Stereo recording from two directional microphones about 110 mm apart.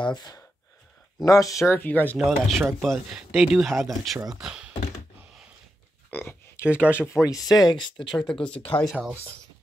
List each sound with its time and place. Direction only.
0.0 s speech: 40° left (ahead or behind)
1.8 s speech: 15° left (ahead or behind)
2.1 s speech: centre (ahead or behind)
6.0 s a sound: 20° left (ahead or behind)
6.7 s speech: 10° right (ahead or behind)
7.2 s speech: 30° left (ahead or behind)
7.6 s speech: 45° left (ahead or behind)
8.2 s speech: 5° left (ahead or behind)
8.5 s speech: 55° left (ahead or behind)